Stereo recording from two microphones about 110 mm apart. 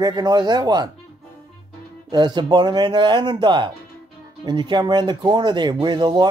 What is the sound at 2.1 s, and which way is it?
Speech, 40° right (ahead or behind).